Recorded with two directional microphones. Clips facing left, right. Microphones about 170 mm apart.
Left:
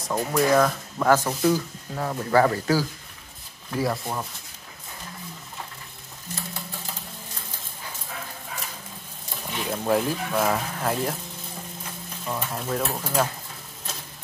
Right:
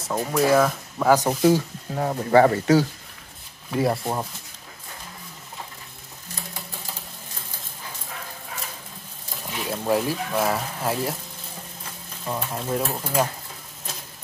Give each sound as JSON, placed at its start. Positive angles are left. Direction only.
{"t": 0.0, "sound": "speech", "side_deg": -5}
{"t": 1.2, "sound": "speech", "side_deg": -30}
{"t": 9.5, "sound": "speech", "side_deg": -5}
{"t": 12.4, "sound": "speech", "side_deg": -10}